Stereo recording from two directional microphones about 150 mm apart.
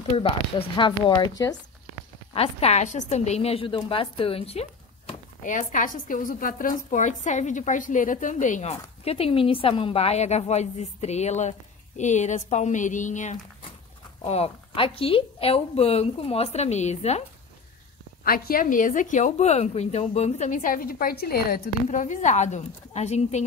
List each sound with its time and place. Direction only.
0.2 s speech: 35° left (ahead or behind)
2.3 s a woman's voice: 45° left (ahead or behind)
5.4 s a woman's voice: 60° left (ahead or behind)
14.2 s a woman's voice: 40° left (ahead or behind)
18.2 s speech: 75° left (ahead or behind); by 21.6 s 90° left
21.8 s a woman's voice: 55° left (ahead or behind)